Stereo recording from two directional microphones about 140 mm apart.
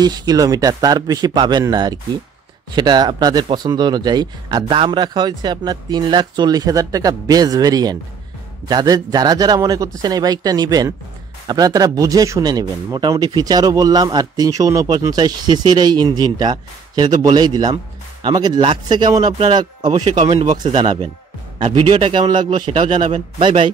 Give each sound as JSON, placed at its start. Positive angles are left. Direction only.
{"t": 0.0, "sound": "speech", "side_deg": -30}
{"t": 20.2, "sound": "speech", "side_deg": -50}
{"t": 20.5, "sound": "speech", "side_deg": -35}
{"t": 21.6, "sound": "speech", "side_deg": -50}
{"t": 22.1, "sound": "speech", "side_deg": -35}